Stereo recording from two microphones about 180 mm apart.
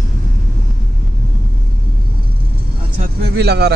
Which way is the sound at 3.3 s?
65° right (ahead or behind).